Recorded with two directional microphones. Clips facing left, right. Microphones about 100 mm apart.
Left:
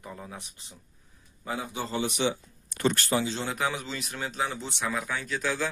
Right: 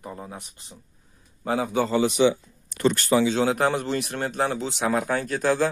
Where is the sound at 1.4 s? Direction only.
65° right (ahead or behind); by 2.0 s 80° right.